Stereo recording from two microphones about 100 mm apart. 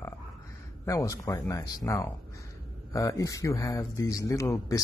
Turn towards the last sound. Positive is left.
turn(degrees=35)  # may be behind; listen again after turning